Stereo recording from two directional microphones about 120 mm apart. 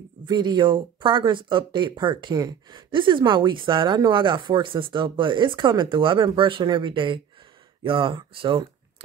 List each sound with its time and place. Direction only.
0.3 s speech: 40° right (ahead or behind)